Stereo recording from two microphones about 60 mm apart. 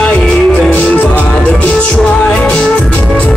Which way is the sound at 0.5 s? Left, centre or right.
Centre.